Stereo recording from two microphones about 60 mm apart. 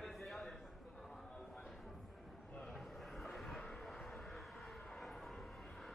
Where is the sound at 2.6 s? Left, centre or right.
Centre.